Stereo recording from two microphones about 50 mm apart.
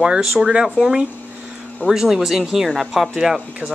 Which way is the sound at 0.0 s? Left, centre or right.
Centre.